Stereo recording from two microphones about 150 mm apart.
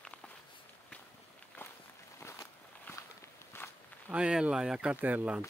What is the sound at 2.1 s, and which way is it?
Walk, 20° left (ahead or behind).